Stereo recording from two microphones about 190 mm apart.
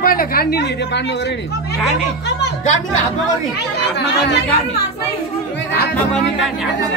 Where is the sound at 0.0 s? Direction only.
50° left (ahead or behind).